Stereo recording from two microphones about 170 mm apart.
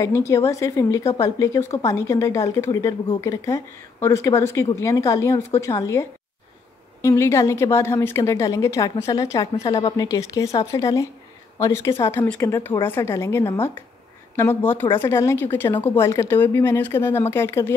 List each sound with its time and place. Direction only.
0.0 s a woman's voice: 15° left (ahead or behind)